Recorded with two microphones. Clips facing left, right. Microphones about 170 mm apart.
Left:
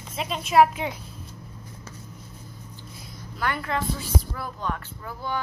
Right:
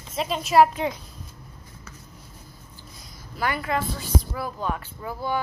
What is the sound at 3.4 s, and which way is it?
A woman's voice, 5° right (ahead or behind).